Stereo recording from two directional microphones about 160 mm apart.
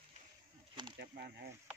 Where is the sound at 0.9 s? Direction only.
90° right.